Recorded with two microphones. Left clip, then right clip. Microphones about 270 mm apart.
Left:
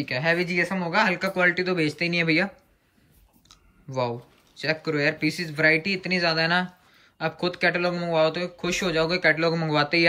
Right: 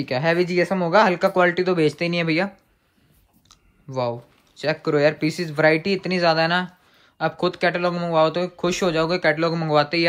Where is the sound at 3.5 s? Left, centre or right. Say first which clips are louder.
Right 2 dB; centre.